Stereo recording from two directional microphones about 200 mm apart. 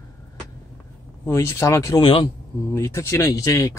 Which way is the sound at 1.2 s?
15° left (ahead or behind).